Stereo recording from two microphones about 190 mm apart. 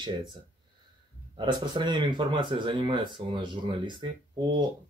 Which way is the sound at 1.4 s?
25° right (ahead or behind).